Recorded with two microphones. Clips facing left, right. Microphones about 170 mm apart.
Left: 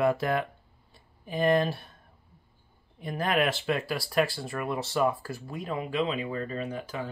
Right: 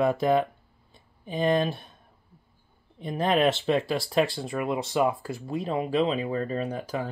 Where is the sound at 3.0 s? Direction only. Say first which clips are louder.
Right 4 dB; 25° right (ahead or behind).